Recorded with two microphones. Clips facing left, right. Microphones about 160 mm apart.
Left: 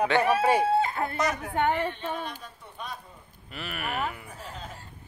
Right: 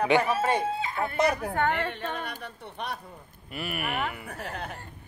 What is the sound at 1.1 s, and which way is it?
Speech, 30° right (ahead or behind).